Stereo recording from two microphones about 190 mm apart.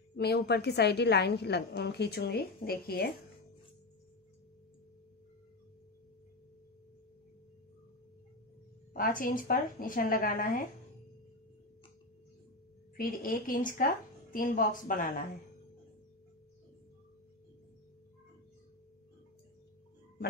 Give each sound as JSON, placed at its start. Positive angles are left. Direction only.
{"t": 0.1, "sound": "a woman's voice", "side_deg": 60}
{"t": 8.9, "sound": "a woman's voice", "side_deg": 45}
{"t": 12.9, "sound": "a woman's voice", "side_deg": 50}